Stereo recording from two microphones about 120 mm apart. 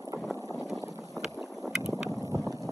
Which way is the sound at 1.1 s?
Centre (ahead or behind).